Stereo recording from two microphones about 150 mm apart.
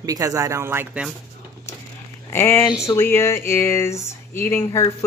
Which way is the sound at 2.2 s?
20° left (ahead or behind).